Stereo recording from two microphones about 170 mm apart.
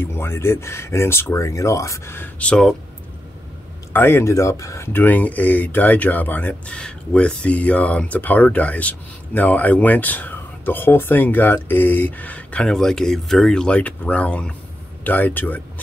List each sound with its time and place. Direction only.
0.0 s speech: 15° left (ahead or behind)
3.9 s speech: 15° left (ahead or behind)